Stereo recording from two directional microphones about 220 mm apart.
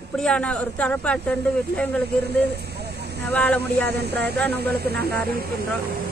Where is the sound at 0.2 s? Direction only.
5° left (ahead or behind).